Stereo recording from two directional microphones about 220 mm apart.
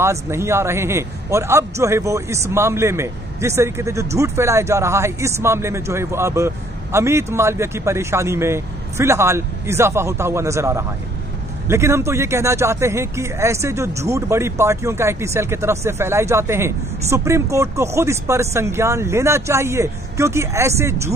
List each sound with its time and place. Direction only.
0.0 s a man's voice: 10° right (ahead or behind)